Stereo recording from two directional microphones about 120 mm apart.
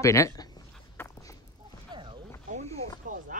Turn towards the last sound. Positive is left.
turn(degrees=-90)